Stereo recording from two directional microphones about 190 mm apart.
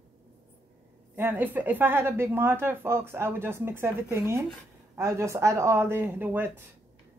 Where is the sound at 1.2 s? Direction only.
10° right (ahead or behind).